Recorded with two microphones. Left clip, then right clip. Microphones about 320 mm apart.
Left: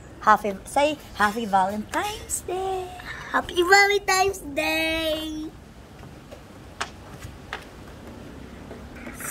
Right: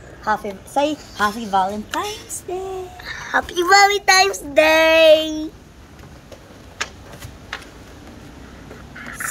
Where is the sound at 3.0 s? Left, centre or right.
Centre.